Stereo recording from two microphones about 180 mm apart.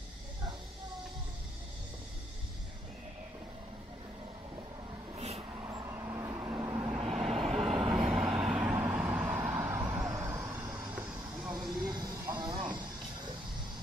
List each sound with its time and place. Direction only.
5.1 s vehicle: 35° right (ahead or behind)
5.5 s vehicle: 15° right (ahead or behind)
7.0 s vehicle: 5° right (ahead or behind)
7.2 s vehicle: 35° right (ahead or behind)
7.5 s vehicle: centre (ahead or behind)
7.8 s vehicle: 25° right (ahead or behind)
8.1 s vehicle: 5° right (ahead or behind)
11.8 s a sound: 20° right (ahead or behind)